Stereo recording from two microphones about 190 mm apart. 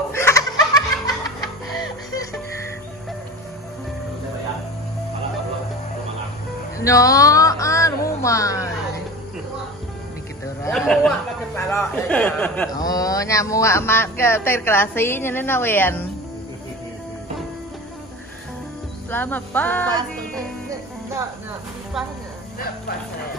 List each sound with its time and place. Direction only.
0.1 s laughter: 15° left (ahead or behind)
6.8 s a sound: 15° left (ahead or behind)
10.7 s a sound: 5° left (ahead or behind)
11.7 s speech: 15° left (ahead or behind)
12.7 s speech: 20° left (ahead or behind)
19.0 s speech: 10° left (ahead or behind)